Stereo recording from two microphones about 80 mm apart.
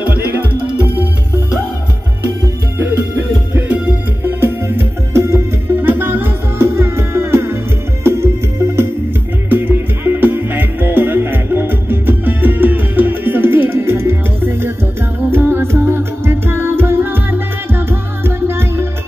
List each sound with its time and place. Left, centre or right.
0.1 s music: right
2.8 s music: right